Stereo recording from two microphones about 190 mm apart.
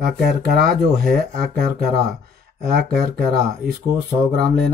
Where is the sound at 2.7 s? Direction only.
55° right (ahead or behind).